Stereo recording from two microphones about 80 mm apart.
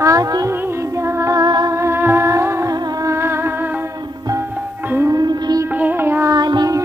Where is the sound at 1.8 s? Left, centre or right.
Right.